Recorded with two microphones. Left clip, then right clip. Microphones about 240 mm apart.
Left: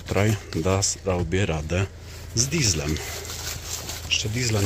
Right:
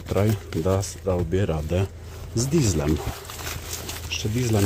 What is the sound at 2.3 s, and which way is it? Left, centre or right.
Speech, right.